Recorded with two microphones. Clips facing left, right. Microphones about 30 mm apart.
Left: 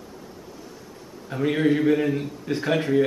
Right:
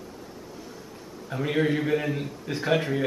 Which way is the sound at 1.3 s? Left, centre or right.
Centre.